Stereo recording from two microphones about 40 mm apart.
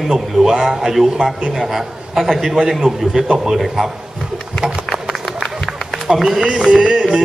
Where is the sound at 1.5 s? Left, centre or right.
Centre.